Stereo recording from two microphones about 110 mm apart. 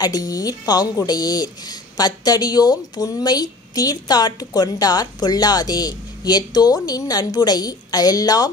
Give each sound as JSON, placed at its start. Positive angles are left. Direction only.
{"t": 0.0, "sound": "speech", "side_deg": 35}